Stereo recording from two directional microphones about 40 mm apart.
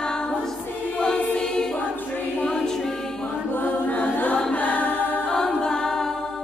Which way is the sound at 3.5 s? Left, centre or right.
Left.